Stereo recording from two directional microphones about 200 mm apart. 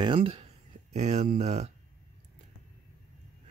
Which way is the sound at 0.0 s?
25° right (ahead or behind).